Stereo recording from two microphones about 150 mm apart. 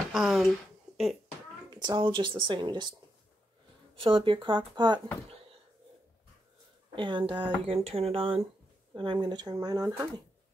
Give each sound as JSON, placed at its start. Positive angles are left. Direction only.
{"t": 0.1, "sound": "a sound", "side_deg": 0}
{"t": 1.7, "sound": "speech", "side_deg": -30}
{"t": 3.9, "sound": "speech", "side_deg": -35}
{"t": 7.0, "sound": "speech", "side_deg": -35}